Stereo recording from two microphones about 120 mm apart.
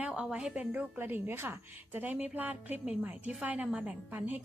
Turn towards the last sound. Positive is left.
turn(degrees=-15)  # may be behind; listen again after turning